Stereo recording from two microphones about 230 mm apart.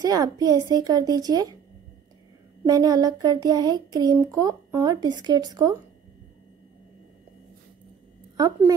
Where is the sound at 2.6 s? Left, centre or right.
Centre.